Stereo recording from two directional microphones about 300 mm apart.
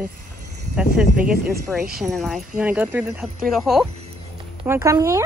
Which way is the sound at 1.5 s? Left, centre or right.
Right.